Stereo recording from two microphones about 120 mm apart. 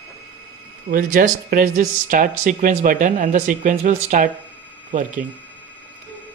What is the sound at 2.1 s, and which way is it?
Speech, 90° right.